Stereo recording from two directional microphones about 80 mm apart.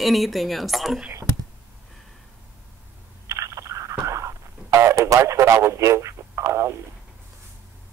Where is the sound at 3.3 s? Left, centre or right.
Right.